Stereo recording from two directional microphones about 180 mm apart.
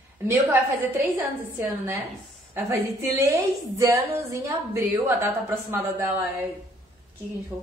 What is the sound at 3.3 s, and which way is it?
A woman's voice, 15° right (ahead or behind).